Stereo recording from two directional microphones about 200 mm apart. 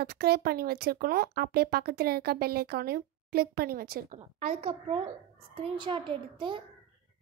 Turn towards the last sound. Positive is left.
turn(degrees=-25)  # may be behind; listen again after turning